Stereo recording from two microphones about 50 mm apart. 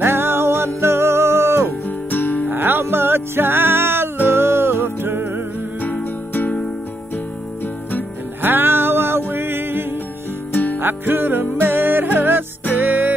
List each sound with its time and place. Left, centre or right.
0.0 s music: right
2.0 s music: left
2.5 s music: right
8.4 s music: right
10.5 s music: left
10.8 s music: right